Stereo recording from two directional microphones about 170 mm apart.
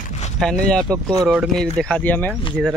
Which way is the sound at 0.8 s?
25° right (ahead or behind).